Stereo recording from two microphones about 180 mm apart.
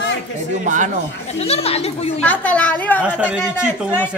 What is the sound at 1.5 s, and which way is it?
Speech, 35° left (ahead or behind).